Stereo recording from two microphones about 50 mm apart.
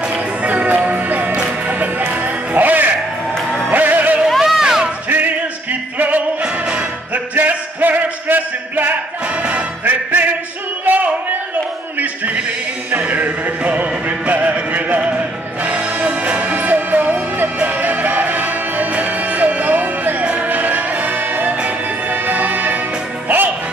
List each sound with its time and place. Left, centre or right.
0.1 s music: right
4.3 s a sound: centre
5.1 s music: right
6.4 s music: centre
7.3 s music: right
10.9 s a sound: right
13.1 s music: right